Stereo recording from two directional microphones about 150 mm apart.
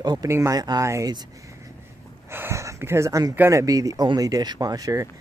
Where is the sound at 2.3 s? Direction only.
15° right (ahead or behind).